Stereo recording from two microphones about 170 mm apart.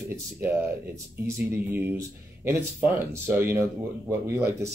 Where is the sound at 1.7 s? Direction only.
10° right (ahead or behind).